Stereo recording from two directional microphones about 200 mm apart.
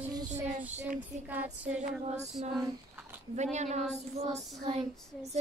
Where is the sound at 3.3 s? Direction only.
35° right (ahead or behind).